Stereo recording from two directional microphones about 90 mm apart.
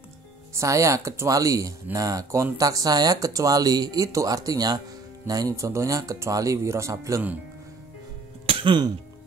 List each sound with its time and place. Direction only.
0.6 s speech: 35° right (ahead or behind)
8.5 s music: 75° right (ahead or behind); by 8.9 s 60° right (ahead or behind)